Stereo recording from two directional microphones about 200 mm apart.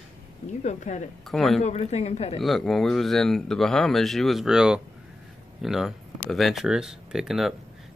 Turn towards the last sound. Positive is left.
turn(degrees=0)  # may be behind; listen again after turning